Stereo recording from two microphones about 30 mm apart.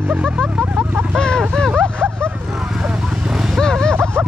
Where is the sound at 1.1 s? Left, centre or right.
Left.